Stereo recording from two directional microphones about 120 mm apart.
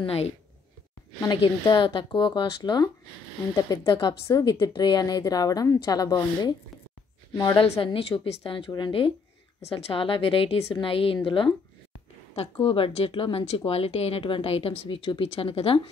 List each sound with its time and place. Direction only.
0.0 s a woman's voice: 55° left (ahead or behind)
1.2 s a woman's voice: 35° left (ahead or behind)
7.8 s speech: 45° left (ahead or behind)
9.6 s a woman's voice: 60° left (ahead or behind)